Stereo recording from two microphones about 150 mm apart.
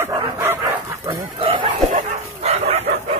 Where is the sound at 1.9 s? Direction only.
45° right (ahead or behind).